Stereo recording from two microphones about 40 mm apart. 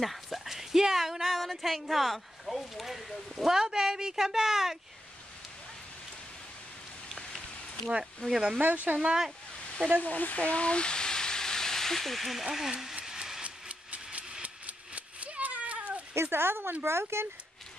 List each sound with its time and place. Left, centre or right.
0.0 s a woman's voice: centre
7.2 s rain on surface: centre
8.2 s speech: left
8.9 s speech: centre
10.0 s speech: left; by 12.7 s centre
13.0 s a sound: centre
13.4 s a sound: right
16.2 s speech: right
16.8 s speech: right